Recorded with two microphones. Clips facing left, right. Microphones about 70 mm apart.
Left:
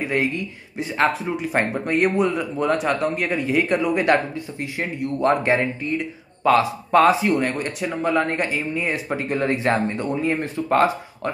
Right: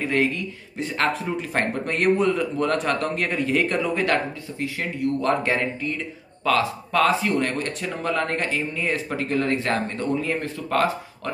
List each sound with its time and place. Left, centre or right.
0.0 s a man's voice: centre